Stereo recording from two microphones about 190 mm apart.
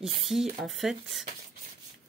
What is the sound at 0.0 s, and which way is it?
Speech, centre (ahead or behind).